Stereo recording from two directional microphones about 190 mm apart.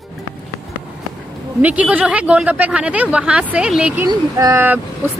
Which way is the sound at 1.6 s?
5° right (ahead or behind).